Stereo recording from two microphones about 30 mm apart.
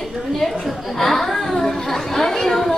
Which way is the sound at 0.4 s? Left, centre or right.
Centre.